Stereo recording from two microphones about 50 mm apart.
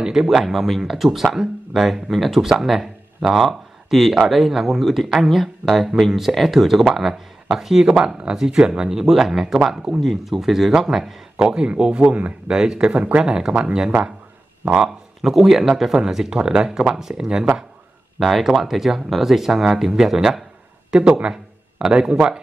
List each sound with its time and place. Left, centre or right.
0.0 s speech: centre
11.4 s speech: centre
12.4 s speech: centre
18.2 s speech: centre
20.9 s a man's voice: centre